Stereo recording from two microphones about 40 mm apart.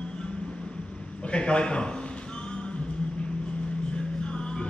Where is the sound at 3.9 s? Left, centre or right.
Left.